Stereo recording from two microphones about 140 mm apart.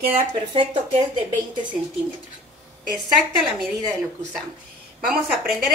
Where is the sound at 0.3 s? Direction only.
35° right (ahead or behind).